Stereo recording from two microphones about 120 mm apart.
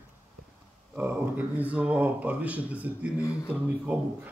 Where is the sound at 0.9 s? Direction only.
15° right (ahead or behind).